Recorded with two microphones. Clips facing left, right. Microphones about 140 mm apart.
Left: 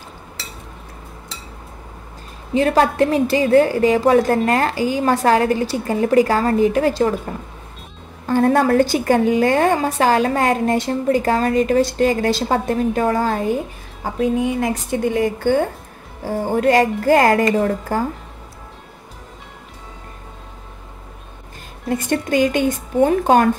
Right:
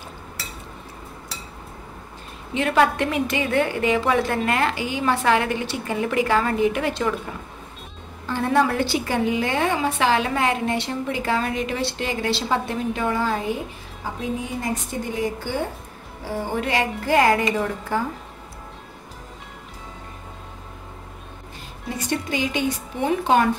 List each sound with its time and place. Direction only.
2.5 s a woman's voice: 35° left (ahead or behind)
8.3 s a woman's voice: 45° left (ahead or behind)
14.4 s speech: 70° left (ahead or behind)
15.5 s a woman's voice: 55° left (ahead or behind)
16.3 s a woman's voice: 45° left (ahead or behind)
21.8 s a woman's voice: 50° left (ahead or behind)